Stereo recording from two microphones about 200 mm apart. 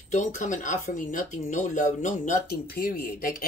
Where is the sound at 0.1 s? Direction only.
35° left (ahead or behind).